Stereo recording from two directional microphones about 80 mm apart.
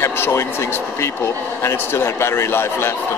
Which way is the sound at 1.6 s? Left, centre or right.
Left.